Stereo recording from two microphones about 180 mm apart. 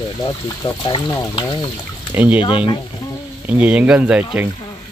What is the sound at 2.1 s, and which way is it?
Speech, 10° right (ahead or behind).